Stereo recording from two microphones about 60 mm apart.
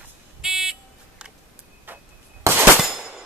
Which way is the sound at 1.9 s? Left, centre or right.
Right.